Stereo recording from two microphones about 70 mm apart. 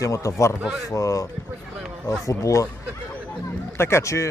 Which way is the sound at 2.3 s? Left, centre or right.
Left.